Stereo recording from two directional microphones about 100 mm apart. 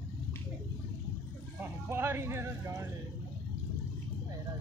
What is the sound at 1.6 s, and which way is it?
Speech, 25° right (ahead or behind).